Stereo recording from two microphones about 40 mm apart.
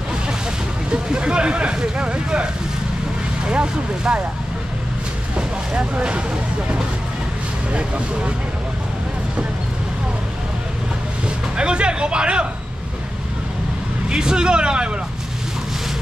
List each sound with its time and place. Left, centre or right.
0.9 s speech: right
5.7 s speech: right
11.2 s speech: right
14.0 s speech: centre